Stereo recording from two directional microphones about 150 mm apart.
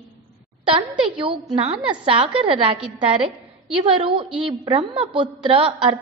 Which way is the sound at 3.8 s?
35° right (ahead or behind).